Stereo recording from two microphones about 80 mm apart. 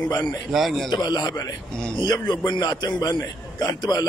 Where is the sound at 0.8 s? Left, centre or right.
Left.